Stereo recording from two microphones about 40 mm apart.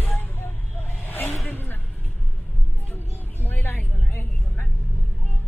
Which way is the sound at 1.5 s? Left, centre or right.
Left.